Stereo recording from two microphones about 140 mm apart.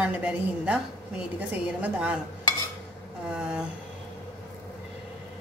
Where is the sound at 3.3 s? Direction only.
5° right (ahead or behind).